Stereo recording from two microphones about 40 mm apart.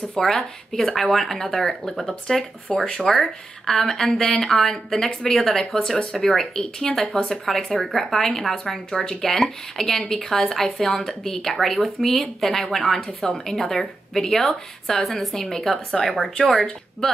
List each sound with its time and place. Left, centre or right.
0.2 s speech: centre
2.9 s speech: centre
17.0 s speech: centre